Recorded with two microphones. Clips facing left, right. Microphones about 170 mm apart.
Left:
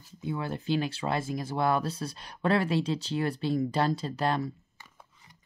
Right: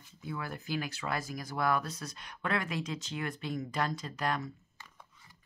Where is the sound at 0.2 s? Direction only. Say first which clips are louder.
Left 6 dB; 25° left (ahead or behind).